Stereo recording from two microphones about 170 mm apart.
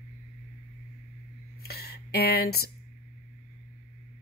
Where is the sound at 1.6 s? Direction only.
65° left (ahead or behind).